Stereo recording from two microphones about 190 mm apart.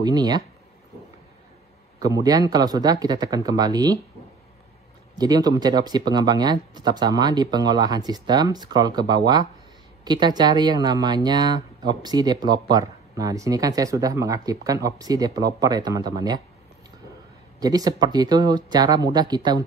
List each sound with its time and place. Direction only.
0.0 s speech: 20° right (ahead or behind)
2.0 s speech: 20° right (ahead or behind)
5.1 s speech: 20° right (ahead or behind)
17.6 s speech: 20° right (ahead or behind)